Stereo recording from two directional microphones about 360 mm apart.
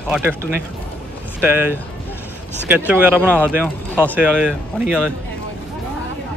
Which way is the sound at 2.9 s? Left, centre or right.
Centre.